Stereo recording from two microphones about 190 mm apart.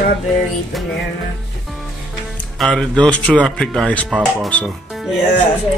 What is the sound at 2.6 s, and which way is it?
Speech, 5° left (ahead or behind).